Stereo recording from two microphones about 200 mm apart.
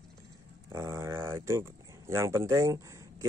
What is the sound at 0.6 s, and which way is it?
Speech, 15° right (ahead or behind).